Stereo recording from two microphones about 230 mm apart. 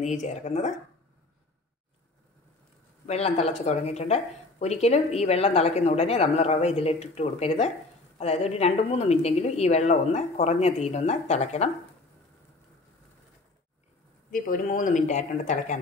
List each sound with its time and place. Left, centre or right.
0.0 s speech: left
3.1 s speech: left
14.3 s speech: left